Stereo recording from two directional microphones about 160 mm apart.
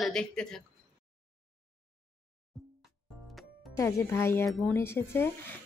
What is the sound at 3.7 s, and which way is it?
Speech, 20° left (ahead or behind).